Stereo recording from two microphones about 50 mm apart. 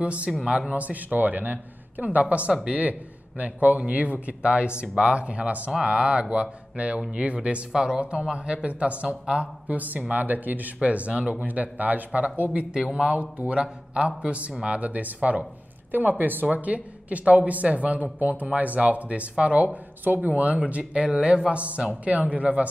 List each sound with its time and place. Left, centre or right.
0.0 s a man's voice: right
2.8 s speech: right
9.7 s a man's voice: right
12.7 s a man's voice: centre